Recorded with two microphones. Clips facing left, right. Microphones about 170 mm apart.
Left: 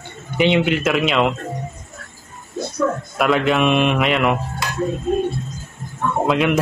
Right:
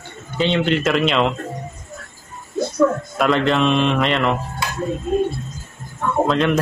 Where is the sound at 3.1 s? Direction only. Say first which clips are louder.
Even; 5° left (ahead or behind).